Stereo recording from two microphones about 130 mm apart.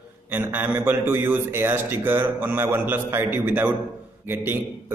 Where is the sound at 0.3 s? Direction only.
15° right (ahead or behind).